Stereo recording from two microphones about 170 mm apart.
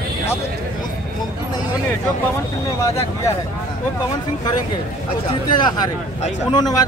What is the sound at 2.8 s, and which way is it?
Speech, 20° left (ahead or behind).